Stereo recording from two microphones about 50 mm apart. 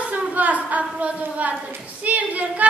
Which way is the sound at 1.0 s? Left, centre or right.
Right.